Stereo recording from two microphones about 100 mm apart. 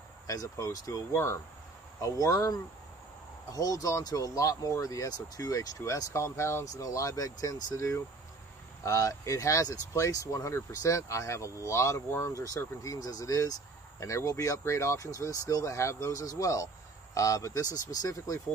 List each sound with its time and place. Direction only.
0.3 s speech: 35° left (ahead or behind)